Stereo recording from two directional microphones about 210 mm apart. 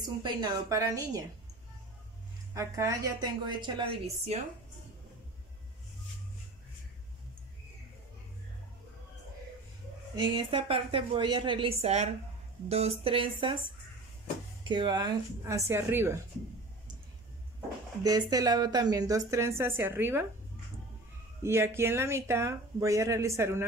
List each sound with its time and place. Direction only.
0.0 s speech: 20° right (ahead or behind)
2.5 s speech: 15° right (ahead or behind)
10.1 s a woman's voice: 20° right (ahead or behind)
14.6 s speech: 20° right (ahead or behind)
18.0 s speech: 15° right (ahead or behind)
21.4 s speech: 10° right (ahead or behind)